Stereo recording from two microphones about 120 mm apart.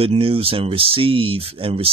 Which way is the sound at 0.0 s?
50° right (ahead or behind).